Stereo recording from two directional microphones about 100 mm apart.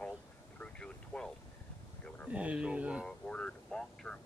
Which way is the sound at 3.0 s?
10° left (ahead or behind).